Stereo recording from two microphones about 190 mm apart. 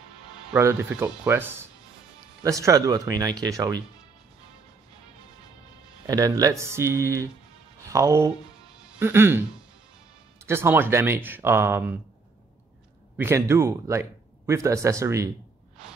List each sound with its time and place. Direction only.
0.5 s speech: 10° right (ahead or behind)
6.0 s speech: 20° right (ahead or behind)
10.4 s speech: 15° right (ahead or behind)
13.2 s speech: 15° right (ahead or behind)